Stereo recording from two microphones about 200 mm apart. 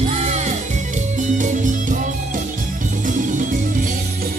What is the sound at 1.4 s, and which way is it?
Music, 40° right (ahead or behind).